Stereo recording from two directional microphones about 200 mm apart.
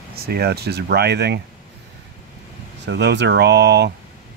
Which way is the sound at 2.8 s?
60° right (ahead or behind).